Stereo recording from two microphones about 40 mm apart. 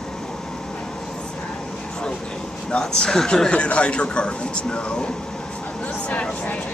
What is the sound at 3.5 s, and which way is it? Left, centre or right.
Speech, left.